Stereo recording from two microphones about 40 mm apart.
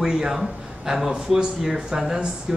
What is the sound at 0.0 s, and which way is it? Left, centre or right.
Speech, centre.